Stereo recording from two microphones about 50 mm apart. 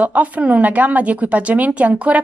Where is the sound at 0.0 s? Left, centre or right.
Right.